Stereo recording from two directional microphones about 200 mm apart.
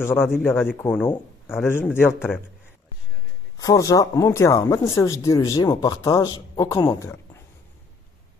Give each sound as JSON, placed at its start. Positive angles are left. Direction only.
{"t": 0.0, "sound": "speech", "side_deg": 10}
{"t": 3.5, "sound": "speech", "side_deg": 15}